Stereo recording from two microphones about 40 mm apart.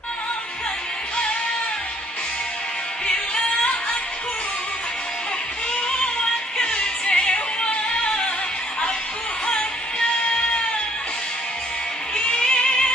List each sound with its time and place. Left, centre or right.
6.6 s music: left
9.5 s music: left
12.3 s music: left